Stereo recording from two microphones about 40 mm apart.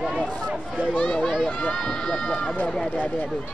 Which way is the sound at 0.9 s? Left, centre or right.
Centre.